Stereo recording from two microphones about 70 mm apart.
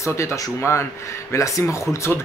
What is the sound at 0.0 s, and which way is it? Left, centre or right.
Speech, left.